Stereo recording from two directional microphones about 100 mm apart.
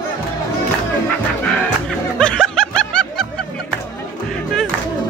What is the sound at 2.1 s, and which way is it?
Music, 5° left (ahead or behind).